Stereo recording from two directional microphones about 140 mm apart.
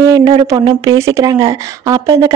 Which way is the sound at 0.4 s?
30° right (ahead or behind).